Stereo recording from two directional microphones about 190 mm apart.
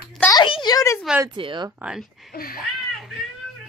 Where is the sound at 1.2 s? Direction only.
25° right (ahead or behind).